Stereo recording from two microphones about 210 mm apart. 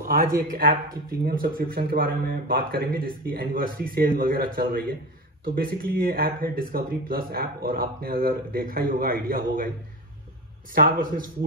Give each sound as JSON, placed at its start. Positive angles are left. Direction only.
{"t": 0.0, "sound": "speech", "side_deg": -40}
{"t": 10.7, "sound": "a man's voice", "side_deg": -40}